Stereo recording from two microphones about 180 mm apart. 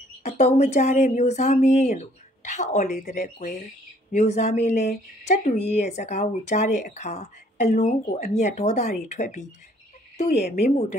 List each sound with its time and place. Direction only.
0.2 s speech: 35° left (ahead or behind)